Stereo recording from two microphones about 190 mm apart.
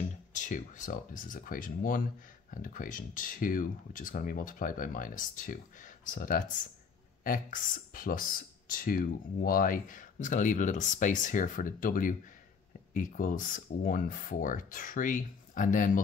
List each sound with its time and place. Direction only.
0.3 s speech: 40° left (ahead or behind)